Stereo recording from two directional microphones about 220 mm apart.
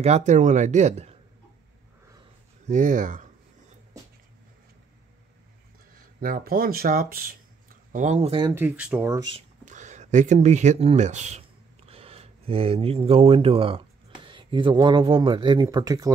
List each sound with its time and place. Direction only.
0.0 s speech: 30° right (ahead or behind)
2.7 s speech: 35° right (ahead or behind)
6.2 s speech: 40° right (ahead or behind)
8.5 s speech: 10° right (ahead or behind)
9.7 s speech: 35° right (ahead or behind); by 16.1 s 15° right (ahead or behind)